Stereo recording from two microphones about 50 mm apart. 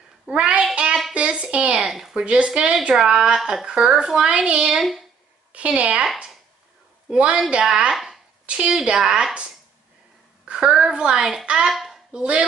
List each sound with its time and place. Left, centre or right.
0.3 s a child's voice: right
1.1 s a sound: right
1.9 s a woman's voice: centre
2.2 s a woman's voice: right
7.1 s a woman's voice: right
7.9 s chopping: centre
8.5 s a woman's voice: centre
11.7 s a sound: centre
12.1 s a woman's voice: right